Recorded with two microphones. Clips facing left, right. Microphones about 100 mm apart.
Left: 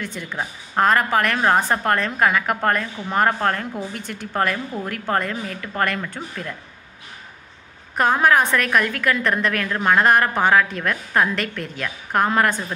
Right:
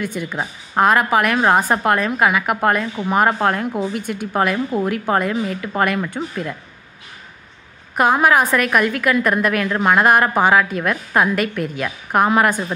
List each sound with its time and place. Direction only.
0.0 s a woman's voice: 15° right (ahead or behind)
7.9 s a woman's voice: 10° right (ahead or behind)